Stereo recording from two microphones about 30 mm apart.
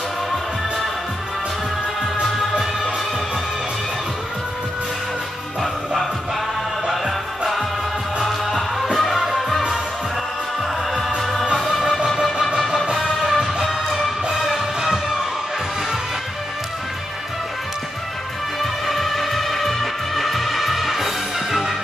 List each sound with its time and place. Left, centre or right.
8.2 s music: centre
12.4 s music: centre
18.6 s music: centre